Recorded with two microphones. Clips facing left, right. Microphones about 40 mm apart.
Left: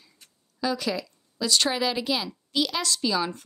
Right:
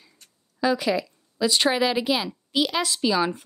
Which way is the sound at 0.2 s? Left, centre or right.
Centre.